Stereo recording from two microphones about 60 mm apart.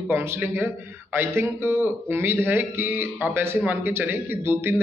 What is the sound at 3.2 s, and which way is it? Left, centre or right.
A man's voice, right.